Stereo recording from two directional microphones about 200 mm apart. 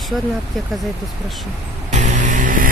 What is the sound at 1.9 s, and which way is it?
Vehicle, 35° right (ahead or behind).